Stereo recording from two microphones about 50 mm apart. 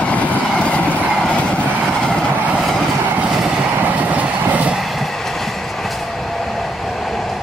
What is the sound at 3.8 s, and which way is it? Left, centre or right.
Vehicle, right.